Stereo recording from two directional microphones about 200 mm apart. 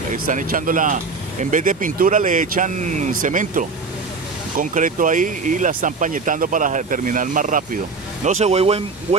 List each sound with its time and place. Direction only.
0.1 s speech: 40° right (ahead or behind)